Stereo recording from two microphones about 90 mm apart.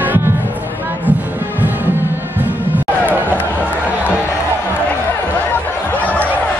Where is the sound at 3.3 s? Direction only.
20° left (ahead or behind).